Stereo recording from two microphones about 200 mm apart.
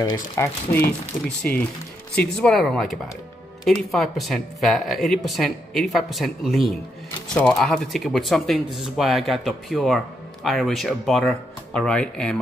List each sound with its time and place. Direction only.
0.0 s speech: 15° left (ahead or behind)